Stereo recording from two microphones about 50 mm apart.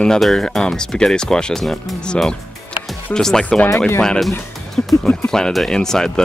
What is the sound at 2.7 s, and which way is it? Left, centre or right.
Music, centre.